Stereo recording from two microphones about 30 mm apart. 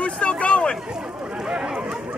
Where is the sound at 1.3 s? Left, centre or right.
Right.